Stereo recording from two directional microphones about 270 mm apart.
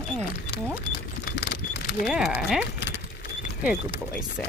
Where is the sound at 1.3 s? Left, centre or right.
Left.